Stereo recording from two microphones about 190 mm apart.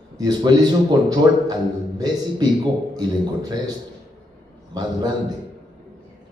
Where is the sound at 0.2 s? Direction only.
20° right (ahead or behind).